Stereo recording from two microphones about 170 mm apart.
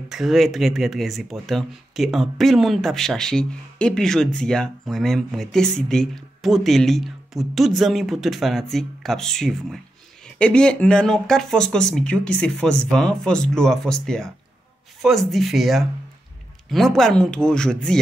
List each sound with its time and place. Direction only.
0.1 s speech: centre (ahead or behind)